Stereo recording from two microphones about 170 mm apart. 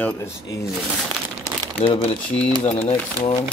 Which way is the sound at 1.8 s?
35° left (ahead or behind).